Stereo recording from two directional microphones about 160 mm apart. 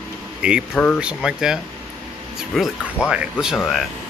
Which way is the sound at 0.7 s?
10° left (ahead or behind).